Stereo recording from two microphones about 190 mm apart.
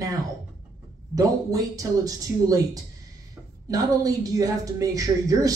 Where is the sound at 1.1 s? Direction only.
20° right (ahead or behind).